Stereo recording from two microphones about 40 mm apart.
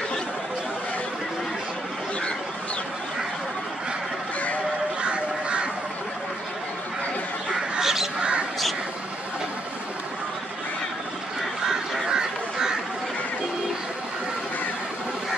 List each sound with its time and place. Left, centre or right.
5.0 s honk: right
7.8 s bird: centre
12.1 s goose: centre